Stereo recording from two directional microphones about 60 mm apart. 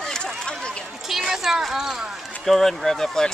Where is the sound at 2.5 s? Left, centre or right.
Centre.